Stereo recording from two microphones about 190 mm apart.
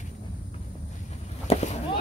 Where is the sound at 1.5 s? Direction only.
35° left (ahead or behind).